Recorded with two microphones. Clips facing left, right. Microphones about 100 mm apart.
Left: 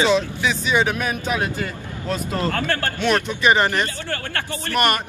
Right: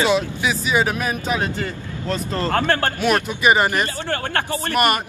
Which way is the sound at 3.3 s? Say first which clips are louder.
Right 1 dB; 10° right (ahead or behind).